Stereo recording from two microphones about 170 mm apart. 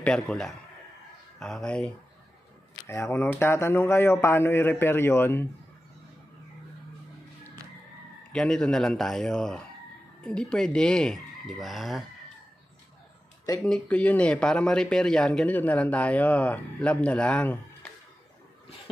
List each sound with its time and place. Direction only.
0.0 s speech: 5° left (ahead or behind)
2.9 s speech: 15° left (ahead or behind)
8.3 s speech: 5° left (ahead or behind)
13.6 s speech: 5° left (ahead or behind)